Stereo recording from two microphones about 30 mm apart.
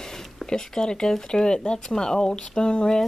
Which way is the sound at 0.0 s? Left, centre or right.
Centre.